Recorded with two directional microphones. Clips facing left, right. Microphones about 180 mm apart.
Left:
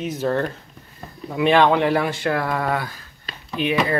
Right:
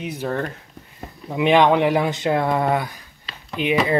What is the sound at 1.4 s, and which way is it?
Speech, 15° right (ahead or behind).